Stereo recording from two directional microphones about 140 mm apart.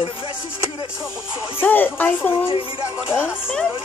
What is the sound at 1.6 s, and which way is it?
Speech, 15° left (ahead or behind).